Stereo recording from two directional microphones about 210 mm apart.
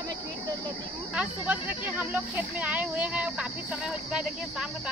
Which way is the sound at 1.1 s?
5° right (ahead or behind).